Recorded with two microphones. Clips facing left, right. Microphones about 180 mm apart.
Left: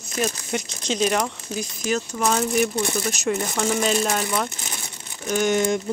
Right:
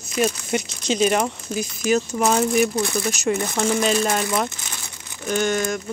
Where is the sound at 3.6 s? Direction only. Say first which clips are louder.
Right 2 dB; 5° left (ahead or behind).